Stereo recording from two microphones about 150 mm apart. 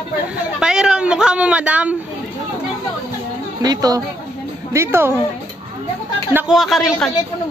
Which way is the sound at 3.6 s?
25° right (ahead or behind).